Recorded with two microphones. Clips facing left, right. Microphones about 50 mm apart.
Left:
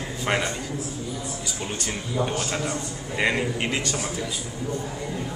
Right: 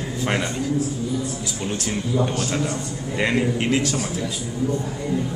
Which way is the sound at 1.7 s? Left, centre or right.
Centre.